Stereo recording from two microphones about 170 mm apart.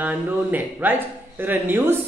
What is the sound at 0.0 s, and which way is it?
Speech, 10° right (ahead or behind).